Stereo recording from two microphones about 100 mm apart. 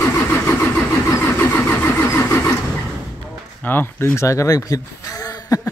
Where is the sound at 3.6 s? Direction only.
20° left (ahead or behind); by 5.5 s 35° left (ahead or behind).